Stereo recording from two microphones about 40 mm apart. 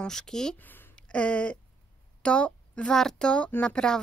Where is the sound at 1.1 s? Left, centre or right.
Left.